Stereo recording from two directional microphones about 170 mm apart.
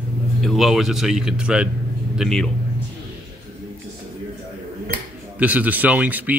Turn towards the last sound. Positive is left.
turn(degrees=-10)  # may be behind; listen again after turning